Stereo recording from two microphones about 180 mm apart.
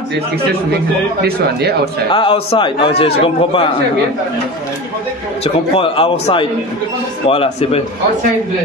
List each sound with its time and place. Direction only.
1.2 s speech: 60° right (ahead or behind)
2.1 s a man's voice: 30° left (ahead or behind)
5.4 s a man's voice: 35° left (ahead or behind)